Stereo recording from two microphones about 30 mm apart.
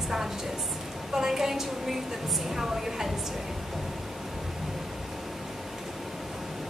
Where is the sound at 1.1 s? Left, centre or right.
Centre.